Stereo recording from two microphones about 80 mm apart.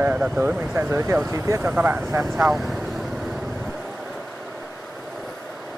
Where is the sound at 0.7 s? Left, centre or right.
Right.